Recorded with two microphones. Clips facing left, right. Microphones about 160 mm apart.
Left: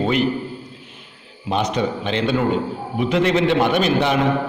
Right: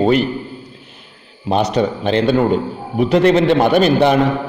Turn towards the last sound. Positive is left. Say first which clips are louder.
# right 6 dB
turn(degrees=-40)  # may be behind; listen again after turning